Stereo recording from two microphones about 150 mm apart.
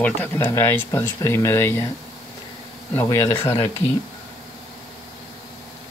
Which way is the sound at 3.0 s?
20° left (ahead or behind).